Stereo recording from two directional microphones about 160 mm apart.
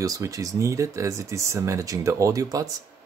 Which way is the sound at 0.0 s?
20° right (ahead or behind).